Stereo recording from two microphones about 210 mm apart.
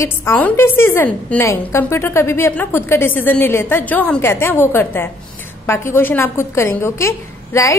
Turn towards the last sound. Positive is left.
turn(degrees=15)  # may be behind; listen again after turning